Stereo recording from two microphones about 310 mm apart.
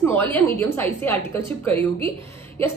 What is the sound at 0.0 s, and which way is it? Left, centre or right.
A woman's voice, centre.